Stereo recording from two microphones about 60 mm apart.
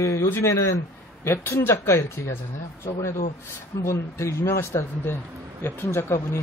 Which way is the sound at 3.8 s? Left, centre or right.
Left.